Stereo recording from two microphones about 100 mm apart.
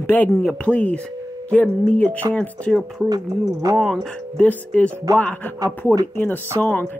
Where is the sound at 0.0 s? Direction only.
20° left (ahead or behind).